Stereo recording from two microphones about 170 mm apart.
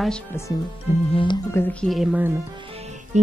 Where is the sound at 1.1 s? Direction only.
25° left (ahead or behind).